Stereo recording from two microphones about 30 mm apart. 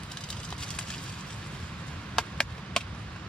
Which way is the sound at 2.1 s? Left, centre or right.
Left.